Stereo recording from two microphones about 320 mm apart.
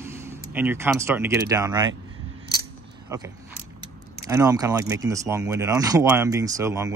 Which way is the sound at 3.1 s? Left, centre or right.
Centre.